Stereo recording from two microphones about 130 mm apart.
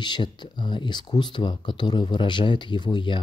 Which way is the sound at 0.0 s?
35° left (ahead or behind).